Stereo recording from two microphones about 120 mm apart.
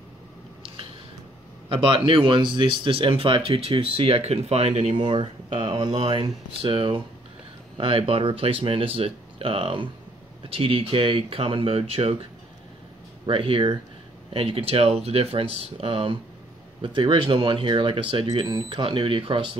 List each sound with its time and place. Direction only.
1.7 s speech: 45° right (ahead or behind); by 4.9 s 65° right (ahead or behind)
4.9 s speech: 45° right (ahead or behind)
13.3 s speech: 45° right (ahead or behind)